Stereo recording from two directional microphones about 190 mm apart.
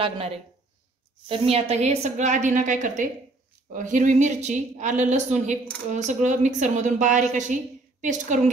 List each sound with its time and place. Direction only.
0.0 s a woman's voice: 30° right (ahead or behind)